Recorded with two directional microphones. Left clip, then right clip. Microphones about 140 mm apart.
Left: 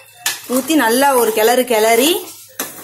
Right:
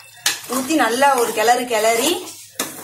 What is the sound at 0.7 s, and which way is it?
A woman's voice, 90° left.